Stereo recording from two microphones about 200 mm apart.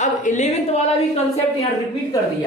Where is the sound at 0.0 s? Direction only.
35° left (ahead or behind).